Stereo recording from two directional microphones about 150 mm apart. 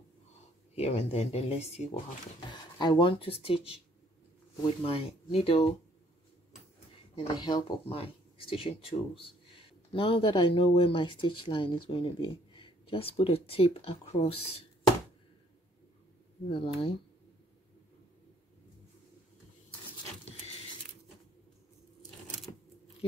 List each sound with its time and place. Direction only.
0.7 s speech: 45° left (ahead or behind)
2.5 s speech: 30° left (ahead or behind)
7.4 s speech: 25° left (ahead or behind)
7.9 s speech: 40° left (ahead or behind)
16.4 s speech: 40° left (ahead or behind)